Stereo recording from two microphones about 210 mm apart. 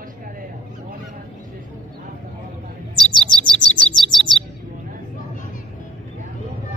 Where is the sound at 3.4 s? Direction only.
5° left (ahead or behind).